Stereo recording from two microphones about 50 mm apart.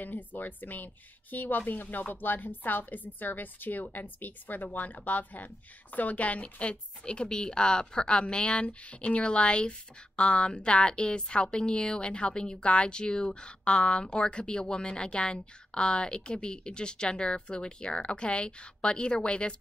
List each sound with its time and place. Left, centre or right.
0.0 s a woman's voice: left